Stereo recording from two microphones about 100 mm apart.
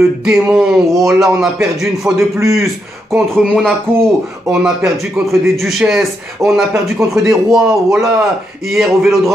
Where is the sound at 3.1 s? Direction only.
5° left (ahead or behind).